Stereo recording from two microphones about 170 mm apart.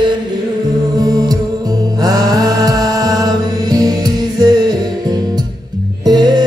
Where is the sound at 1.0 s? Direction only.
25° right (ahead or behind).